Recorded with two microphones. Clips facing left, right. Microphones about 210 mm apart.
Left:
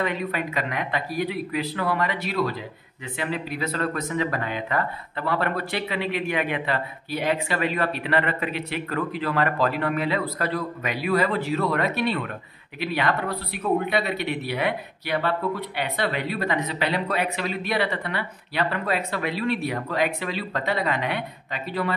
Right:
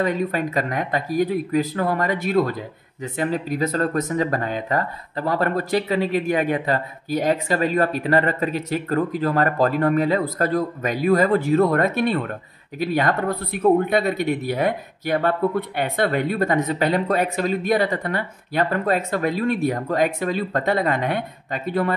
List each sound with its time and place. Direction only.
0.0 s speech: 40° right (ahead or behind)